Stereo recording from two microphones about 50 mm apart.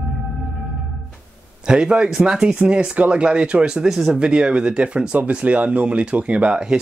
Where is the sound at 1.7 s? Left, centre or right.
Centre.